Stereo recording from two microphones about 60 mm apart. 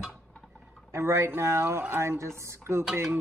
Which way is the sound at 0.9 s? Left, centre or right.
Right.